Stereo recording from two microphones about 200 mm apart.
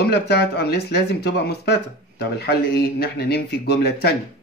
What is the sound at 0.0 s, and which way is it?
Speech, 55° left (ahead or behind).